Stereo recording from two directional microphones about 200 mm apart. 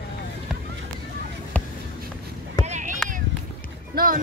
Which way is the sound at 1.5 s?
5° left (ahead or behind).